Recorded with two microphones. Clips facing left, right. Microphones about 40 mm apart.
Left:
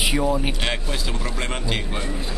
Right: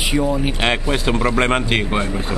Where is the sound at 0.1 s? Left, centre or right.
Centre.